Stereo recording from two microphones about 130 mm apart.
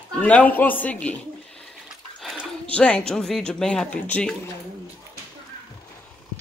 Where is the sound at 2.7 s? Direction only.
10° left (ahead or behind).